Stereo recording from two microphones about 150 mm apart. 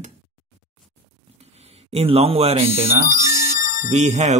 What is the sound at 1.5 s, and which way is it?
Speech, 45° right (ahead or behind).